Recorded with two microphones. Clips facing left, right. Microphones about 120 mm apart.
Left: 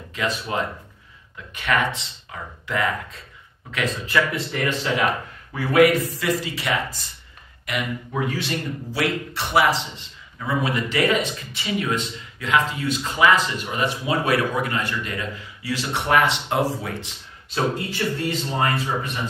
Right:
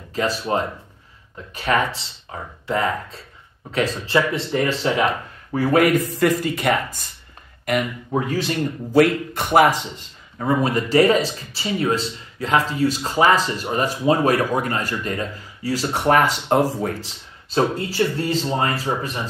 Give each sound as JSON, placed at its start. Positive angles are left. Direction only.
{"t": 0.1, "sound": "a man's voice", "side_deg": -35}